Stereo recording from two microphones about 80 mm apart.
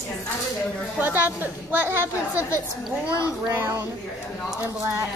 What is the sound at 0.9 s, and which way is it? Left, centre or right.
A woman's voice, right.